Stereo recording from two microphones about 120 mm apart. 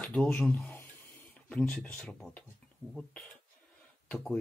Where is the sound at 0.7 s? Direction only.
25° left (ahead or behind).